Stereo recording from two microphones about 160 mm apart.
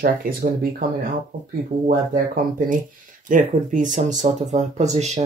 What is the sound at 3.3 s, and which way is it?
Speech, 55° right (ahead or behind).